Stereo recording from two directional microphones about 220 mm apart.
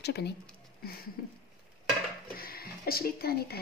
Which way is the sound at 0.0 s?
50° left (ahead or behind).